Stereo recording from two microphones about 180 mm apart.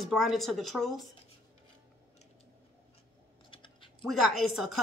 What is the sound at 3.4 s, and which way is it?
Typing, 30° left (ahead or behind).